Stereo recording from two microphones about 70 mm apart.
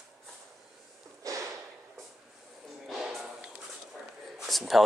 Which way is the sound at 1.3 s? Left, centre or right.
Right.